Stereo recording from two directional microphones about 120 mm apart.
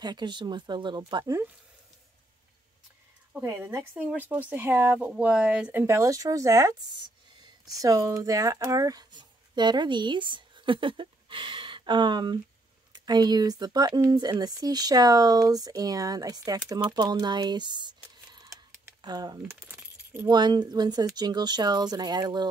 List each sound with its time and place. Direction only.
0.0 s speech: 35° right (ahead or behind)
3.3 s speech: 25° right (ahead or behind)
19.7 s keys jangling: 15° right (ahead or behind)
20.2 s speech: 35° right (ahead or behind)